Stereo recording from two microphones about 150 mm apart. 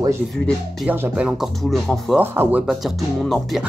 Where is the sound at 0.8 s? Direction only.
10° right (ahead or behind).